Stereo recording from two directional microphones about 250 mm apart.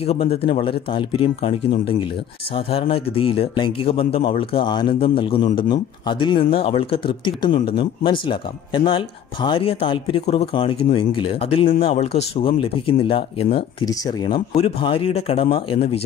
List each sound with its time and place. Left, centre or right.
0.0 s a man's voice: left